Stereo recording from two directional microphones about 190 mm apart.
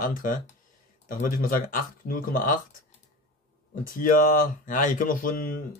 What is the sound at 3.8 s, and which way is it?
Speech, 45° left (ahead or behind).